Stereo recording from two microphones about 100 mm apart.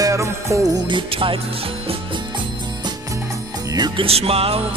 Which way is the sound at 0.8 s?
55° right (ahead or behind).